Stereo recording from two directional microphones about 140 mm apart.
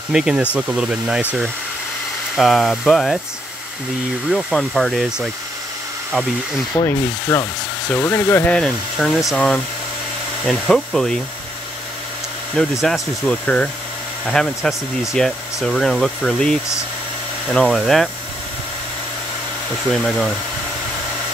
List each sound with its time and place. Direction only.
0.1 s speech: 5° right (ahead or behind)
2.3 s speech: centre (ahead or behind)
4.3 s speech: centre (ahead or behind)
6.7 s rub: 20° left (ahead or behind)
7.9 s speech: 20° left (ahead or behind)
12.8 s speech: 5° left (ahead or behind)
19.9 s speech: 5° left (ahead or behind)